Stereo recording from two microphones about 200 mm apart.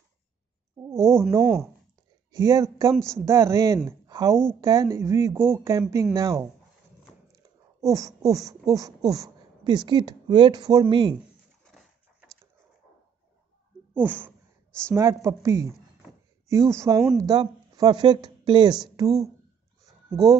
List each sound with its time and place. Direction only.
1.0 s speech: 15° right (ahead or behind)
11.7 s a sound: centre (ahead or behind)
13.9 s speech: 10° right (ahead or behind)